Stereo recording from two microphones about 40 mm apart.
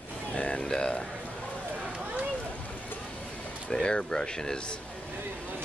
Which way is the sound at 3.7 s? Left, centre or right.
Left.